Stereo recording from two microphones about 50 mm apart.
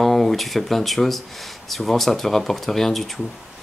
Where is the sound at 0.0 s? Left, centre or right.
Centre.